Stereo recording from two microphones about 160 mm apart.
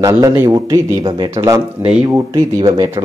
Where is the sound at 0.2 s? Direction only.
20° right (ahead or behind).